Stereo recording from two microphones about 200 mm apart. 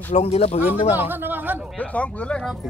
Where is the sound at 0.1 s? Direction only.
30° left (ahead or behind).